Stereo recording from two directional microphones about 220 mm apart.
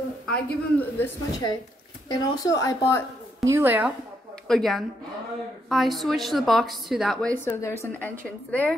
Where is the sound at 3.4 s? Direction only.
10° right (ahead or behind); by 7.7 s 10° left (ahead or behind).